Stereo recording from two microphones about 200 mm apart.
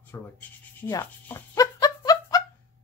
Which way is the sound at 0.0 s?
10° left (ahead or behind).